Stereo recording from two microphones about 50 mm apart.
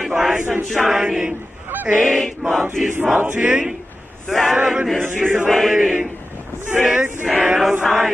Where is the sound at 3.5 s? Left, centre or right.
Centre.